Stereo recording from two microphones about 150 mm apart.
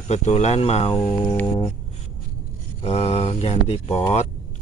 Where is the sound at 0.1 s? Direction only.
50° left (ahead or behind).